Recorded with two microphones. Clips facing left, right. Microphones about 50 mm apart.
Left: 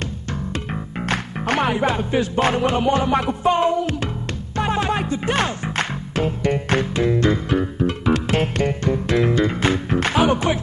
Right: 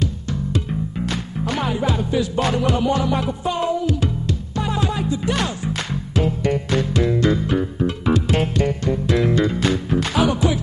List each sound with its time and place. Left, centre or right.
0.0 s music: left
7.8 s music: left
9.3 s music: left